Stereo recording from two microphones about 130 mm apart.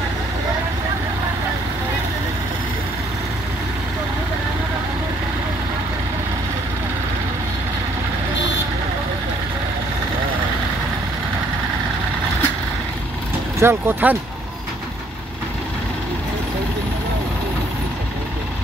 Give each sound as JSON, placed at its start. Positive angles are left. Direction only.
{"t": 13.6, "sound": "speech", "side_deg": -20}